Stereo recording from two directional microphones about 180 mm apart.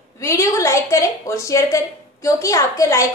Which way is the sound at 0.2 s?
15° left (ahead or behind).